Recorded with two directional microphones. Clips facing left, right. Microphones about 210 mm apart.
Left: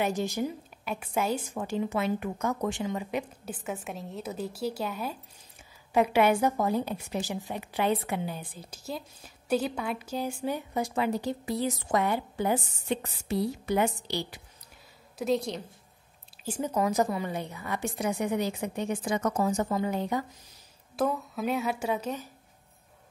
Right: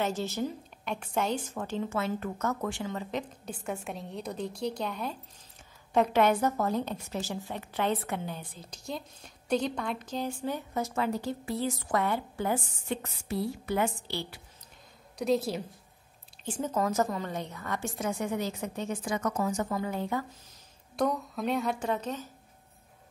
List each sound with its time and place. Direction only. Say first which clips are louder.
0.0 s a woman's voice: left 2 dB; 15° left (ahead or behind)
15.1 s a woman's voice: even; centre (ahead or behind)
16.4 s a woman's voice: left 2 dB; 10° left (ahead or behind)
20.9 s a woman's voice: even; 5° left (ahead or behind)